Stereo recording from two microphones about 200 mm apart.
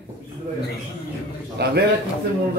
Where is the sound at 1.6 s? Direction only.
55° right (ahead or behind).